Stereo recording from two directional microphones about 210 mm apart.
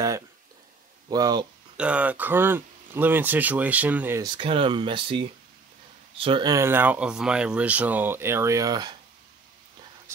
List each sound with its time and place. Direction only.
1.1 s speech: 20° right (ahead or behind)
1.8 s speech: 5° right (ahead or behind)
4.4 s speech: 25° right (ahead or behind)